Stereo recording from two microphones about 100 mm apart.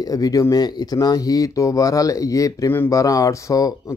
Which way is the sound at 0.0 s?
40° left (ahead or behind).